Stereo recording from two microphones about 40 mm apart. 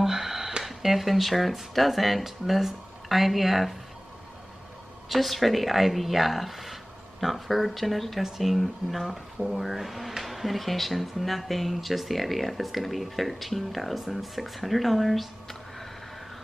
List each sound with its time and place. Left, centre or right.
0.0 s a sound: centre
0.7 s speech: centre
5.1 s speech: centre